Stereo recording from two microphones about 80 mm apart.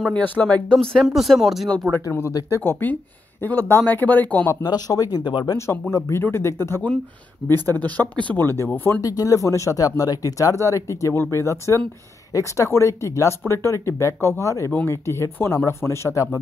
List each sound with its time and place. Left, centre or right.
0.4 s speech: centre
1.0 s speech: centre
2.6 s speech: left
4.6 s speech: left
5.6 s speech: left
9.0 s speech: left